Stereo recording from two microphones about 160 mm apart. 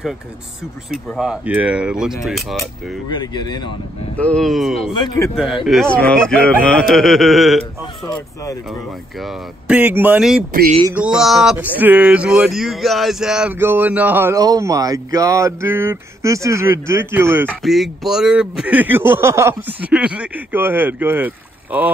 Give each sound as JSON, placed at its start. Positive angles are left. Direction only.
{"t": 0.9, "sound": "speech", "side_deg": -5}
{"t": 3.1, "sound": "speech", "side_deg": 25}
{"t": 4.2, "sound": "speech", "side_deg": 5}
{"t": 4.9, "sound": "speech", "side_deg": 30}
{"t": 5.3, "sound": "speech", "side_deg": 0}
{"t": 9.7, "sound": "speech", "side_deg": -10}
{"t": 17.5, "sound": "speech", "side_deg": 0}
{"t": 19.9, "sound": "speech", "side_deg": -5}